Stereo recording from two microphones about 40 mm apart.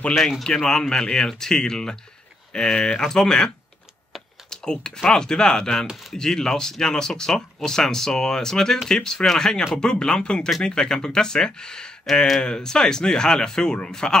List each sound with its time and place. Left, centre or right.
0.4 s speech: centre
12.1 s speech: centre
12.4 s speech: centre